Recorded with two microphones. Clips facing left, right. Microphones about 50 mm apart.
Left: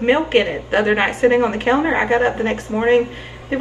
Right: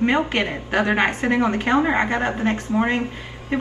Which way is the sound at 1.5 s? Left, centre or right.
Centre.